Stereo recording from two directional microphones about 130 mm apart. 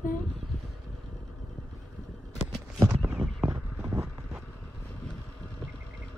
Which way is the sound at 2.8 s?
15° right (ahead or behind).